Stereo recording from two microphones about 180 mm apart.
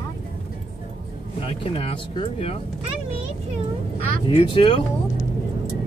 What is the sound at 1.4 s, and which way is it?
Speech, 30° left (ahead or behind).